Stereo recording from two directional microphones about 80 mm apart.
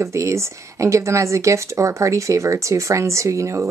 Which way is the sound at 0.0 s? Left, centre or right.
Right.